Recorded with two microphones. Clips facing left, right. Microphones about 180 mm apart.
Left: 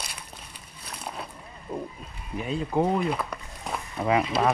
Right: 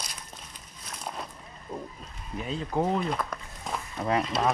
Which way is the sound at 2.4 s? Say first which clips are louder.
Left 3 dB; 5° left (ahead or behind).